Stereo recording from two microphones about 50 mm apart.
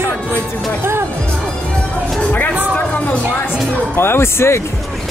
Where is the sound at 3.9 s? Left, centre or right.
Left.